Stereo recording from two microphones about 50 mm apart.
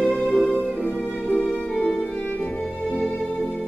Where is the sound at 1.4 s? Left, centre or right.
Left.